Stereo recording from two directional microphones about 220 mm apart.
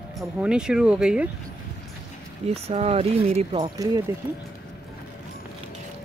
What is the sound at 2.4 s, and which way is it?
Speech, 30° right (ahead or behind).